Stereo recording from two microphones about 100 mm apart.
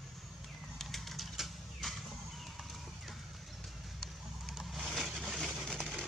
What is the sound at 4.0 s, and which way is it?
Vehicle, centre (ahead or behind).